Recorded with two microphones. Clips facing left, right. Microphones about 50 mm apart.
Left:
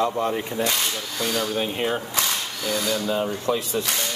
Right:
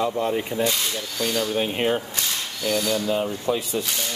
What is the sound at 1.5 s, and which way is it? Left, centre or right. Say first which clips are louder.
Speech: right 2 dB; centre.